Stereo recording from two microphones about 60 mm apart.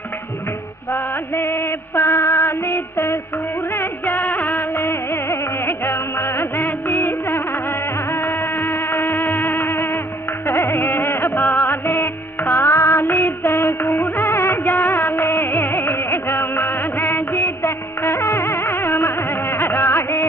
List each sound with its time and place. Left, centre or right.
0.9 s music: left
3.7 s music of bollywood: left
8.1 s music: left
12.7 s music of bollywood: left
14.4 s music: left